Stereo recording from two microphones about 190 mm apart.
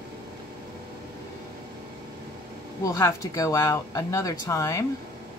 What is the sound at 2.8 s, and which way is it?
A woman's voice, 15° left (ahead or behind).